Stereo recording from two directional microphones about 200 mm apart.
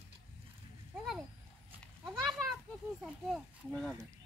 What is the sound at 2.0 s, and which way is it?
Goat, centre (ahead or behind).